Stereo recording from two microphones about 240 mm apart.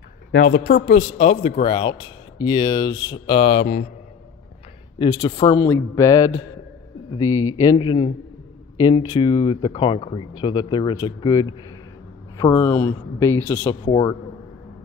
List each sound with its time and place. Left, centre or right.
0.5 s a woman's voice: left
0.9 s speech: left
4.9 s speech: centre